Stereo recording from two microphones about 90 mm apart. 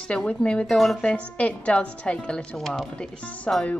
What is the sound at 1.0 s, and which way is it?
A woman's voice, 15° left (ahead or behind).